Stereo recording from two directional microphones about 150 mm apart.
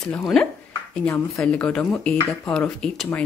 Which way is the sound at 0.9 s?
15° left (ahead or behind).